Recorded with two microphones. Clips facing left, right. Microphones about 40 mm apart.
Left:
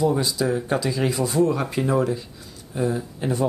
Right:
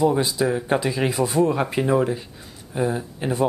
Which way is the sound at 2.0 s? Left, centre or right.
Right.